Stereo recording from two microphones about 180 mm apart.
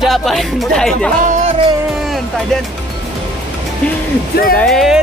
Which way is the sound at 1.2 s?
45° right (ahead or behind).